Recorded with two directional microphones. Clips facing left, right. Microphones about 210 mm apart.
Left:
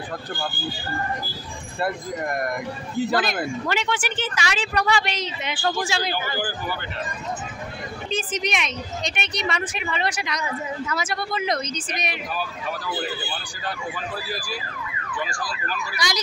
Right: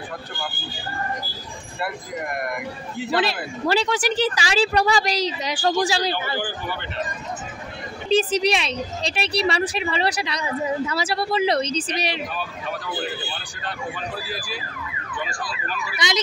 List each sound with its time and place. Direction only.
2.4 s speech: 40° left (ahead or behind)
3.6 s a woman's voice: 35° right (ahead or behind)
8.1 s a woman's voice: 35° right (ahead or behind)
12.4 s speech: centre (ahead or behind)